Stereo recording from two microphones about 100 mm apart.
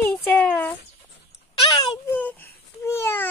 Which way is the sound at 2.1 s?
15° left (ahead or behind).